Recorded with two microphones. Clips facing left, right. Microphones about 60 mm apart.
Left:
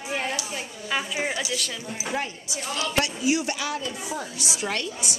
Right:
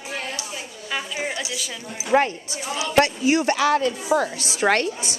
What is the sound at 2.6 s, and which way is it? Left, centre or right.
Speech, centre.